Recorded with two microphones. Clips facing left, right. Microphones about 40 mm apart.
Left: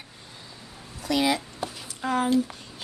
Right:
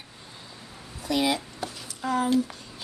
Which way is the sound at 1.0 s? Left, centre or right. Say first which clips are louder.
Left 1 dB; left.